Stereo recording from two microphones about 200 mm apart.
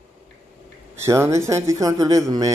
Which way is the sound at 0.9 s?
15° right (ahead or behind).